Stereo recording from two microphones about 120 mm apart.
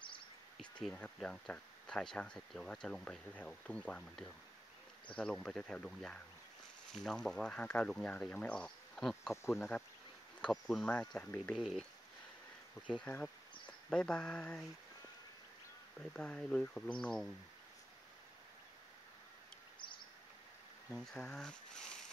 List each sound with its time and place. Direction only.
0.6 s speech: 10° left (ahead or behind)
9.3 s speech: 20° left (ahead or behind)
10.4 s speech: 5° left (ahead or behind)
11.5 s speech: 5° right (ahead or behind)
12.9 s speech: 10° left (ahead or behind)
16.1 s speech: 5° left (ahead or behind)
20.9 s speech: 5° left (ahead or behind)